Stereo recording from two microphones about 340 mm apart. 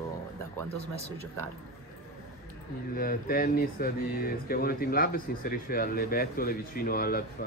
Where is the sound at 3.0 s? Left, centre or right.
Left.